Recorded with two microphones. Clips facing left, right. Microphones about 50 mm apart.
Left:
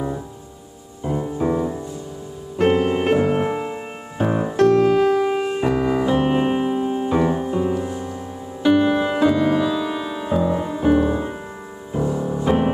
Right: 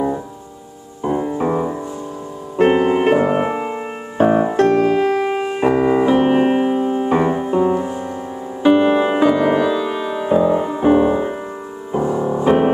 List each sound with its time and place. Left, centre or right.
1.0 s music: right
4.8 s piano: right
7.1 s piano: right
8.6 s music: right
9.7 s music: centre